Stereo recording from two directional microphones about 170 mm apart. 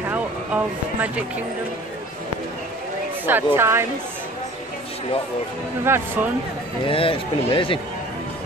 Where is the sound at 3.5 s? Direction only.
15° right (ahead or behind).